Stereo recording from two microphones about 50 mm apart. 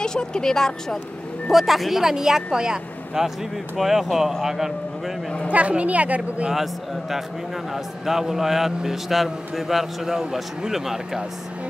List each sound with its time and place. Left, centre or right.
0.0 s speech: centre
1.5 s a man's voice: centre
5.5 s a woman's voice: right
6.5 s a man's voice: centre